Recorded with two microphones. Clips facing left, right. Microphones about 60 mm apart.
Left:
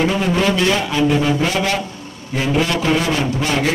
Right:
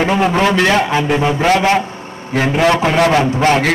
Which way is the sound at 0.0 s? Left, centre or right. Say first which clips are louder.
Right 4 dB; right.